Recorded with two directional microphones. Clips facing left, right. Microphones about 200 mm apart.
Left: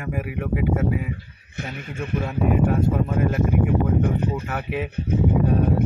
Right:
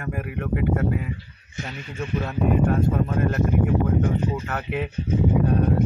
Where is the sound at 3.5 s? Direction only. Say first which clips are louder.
Left 1 dB; 60° left (ahead or behind).